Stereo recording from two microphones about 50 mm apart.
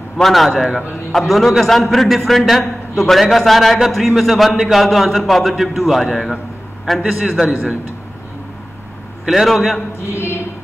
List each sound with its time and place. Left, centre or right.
0.2 s a man's voice: centre
9.3 s a man's voice: centre
10.1 s a sound: left